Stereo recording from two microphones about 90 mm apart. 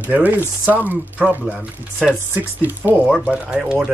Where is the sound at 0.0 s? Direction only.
20° right (ahead or behind).